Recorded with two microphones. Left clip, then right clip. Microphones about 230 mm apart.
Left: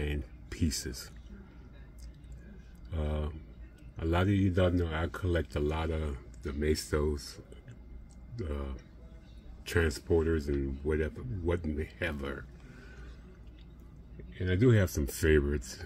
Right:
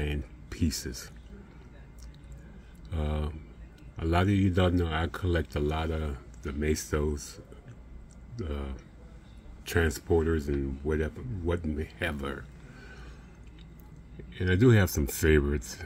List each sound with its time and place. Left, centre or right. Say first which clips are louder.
0.0 s a sound: right 2 dB; centre
2.9 s a man's voice: right 2 dB; centre
8.4 s a man's voice: right 2 dB; centre
14.4 s a man's voice: right 4 dB; right